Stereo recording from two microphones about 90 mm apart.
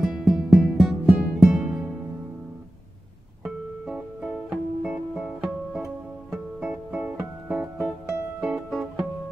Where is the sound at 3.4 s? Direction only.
10° right (ahead or behind).